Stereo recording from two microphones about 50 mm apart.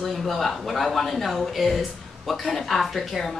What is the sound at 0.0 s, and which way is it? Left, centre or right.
A woman's voice, centre.